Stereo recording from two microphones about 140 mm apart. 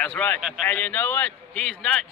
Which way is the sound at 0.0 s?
10° left (ahead or behind).